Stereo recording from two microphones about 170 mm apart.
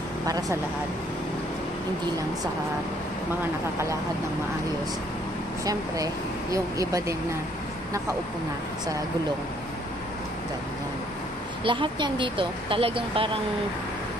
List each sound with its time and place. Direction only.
0.3 s speech: 20° right (ahead or behind)
6.5 s speech: 20° right (ahead or behind)
11.6 s speech: 30° right (ahead or behind)